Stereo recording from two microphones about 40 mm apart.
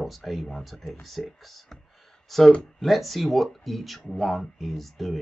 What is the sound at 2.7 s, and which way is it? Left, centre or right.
Speech, centre.